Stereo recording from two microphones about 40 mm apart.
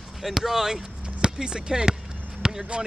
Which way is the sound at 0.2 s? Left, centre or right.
Centre.